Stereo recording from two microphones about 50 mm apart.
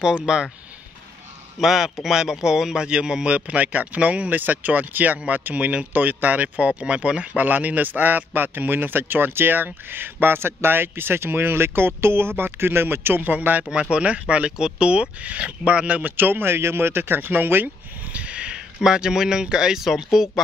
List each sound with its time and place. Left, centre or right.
0.3 s speech: centre
1.6 s speech: centre; by 13.7 s right
13.7 s speech: centre
16.2 s speech: right
18.0 s speech: right; by 20.4 s centre